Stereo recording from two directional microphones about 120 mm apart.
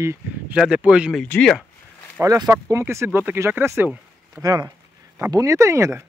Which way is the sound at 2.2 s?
25° right (ahead or behind).